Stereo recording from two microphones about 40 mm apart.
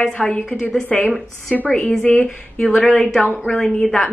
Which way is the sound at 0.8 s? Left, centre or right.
Left.